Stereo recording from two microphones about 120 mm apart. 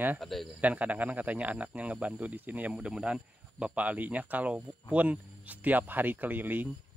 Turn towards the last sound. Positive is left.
turn(degrees=-15)  # may be behind; listen again after turning